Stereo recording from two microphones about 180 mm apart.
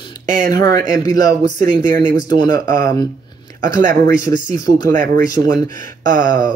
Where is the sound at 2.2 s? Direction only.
25° left (ahead or behind).